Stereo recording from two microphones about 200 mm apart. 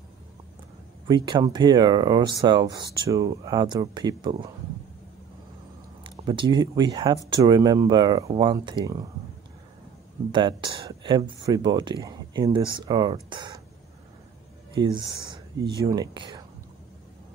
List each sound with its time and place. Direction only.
1.0 s speech: 25° right (ahead or behind)
6.0 s speech: 25° right (ahead or behind)
10.3 s speech: 25° right (ahead or behind)
14.8 s speech: 25° right (ahead or behind)